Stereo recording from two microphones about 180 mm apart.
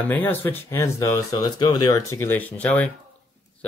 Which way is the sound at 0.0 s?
10° left (ahead or behind).